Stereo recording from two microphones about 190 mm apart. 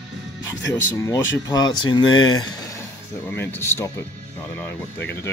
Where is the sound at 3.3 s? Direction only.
10° left (ahead or behind).